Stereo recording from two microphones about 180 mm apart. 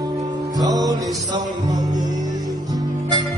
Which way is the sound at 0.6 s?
20° right (ahead or behind).